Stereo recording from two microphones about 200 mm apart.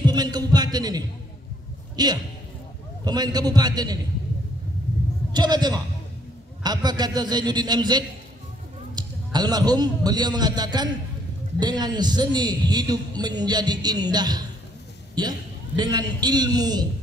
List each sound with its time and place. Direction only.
0.0 s a man's voice: 20° right (ahead or behind)
5.3 s a man's voice: 20° right (ahead or behind)